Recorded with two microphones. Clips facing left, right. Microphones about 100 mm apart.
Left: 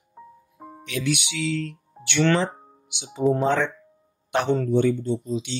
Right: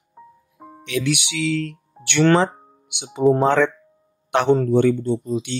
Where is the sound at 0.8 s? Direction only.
70° right (ahead or behind).